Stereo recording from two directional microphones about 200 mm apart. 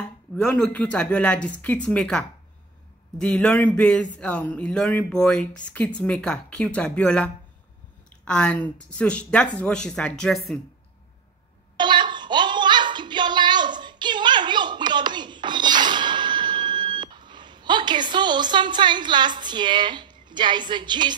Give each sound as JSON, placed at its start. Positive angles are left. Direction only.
{"t": 0.4, "sound": "speech", "side_deg": 5}
{"t": 8.3, "sound": "speech", "side_deg": 5}
{"t": 11.7, "sound": "a sound", "side_deg": -25}